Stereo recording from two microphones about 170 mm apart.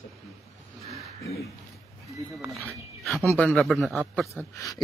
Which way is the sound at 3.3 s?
5° left (ahead or behind).